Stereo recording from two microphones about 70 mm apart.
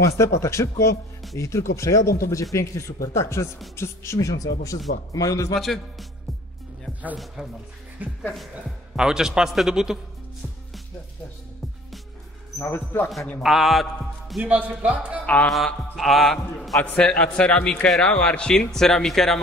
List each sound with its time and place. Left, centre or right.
0.0 s speech: left
4.3 s speech: left
5.5 s music: centre
7.4 s a man's voice: centre
8.3 s music: centre
8.9 s a man's voice: centre
12.5 s speech: left
13.4 s music: centre
14.4 s a man's voice: right
15.2 s speech: left
15.5 s music: centre
16.8 s speech: centre